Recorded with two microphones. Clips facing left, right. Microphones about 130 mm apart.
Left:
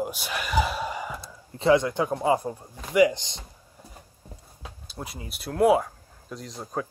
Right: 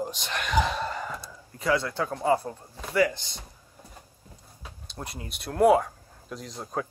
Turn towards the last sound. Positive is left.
turn(degrees=0)  # may be behind; listen again after turning